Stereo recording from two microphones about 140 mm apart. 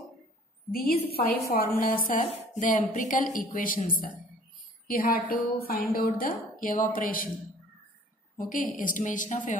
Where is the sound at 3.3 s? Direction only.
80° left.